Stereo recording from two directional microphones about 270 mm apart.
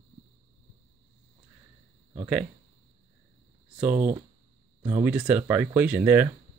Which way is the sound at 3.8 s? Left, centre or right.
Centre.